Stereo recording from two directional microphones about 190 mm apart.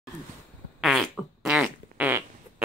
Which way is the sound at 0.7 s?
Centre (ahead or behind).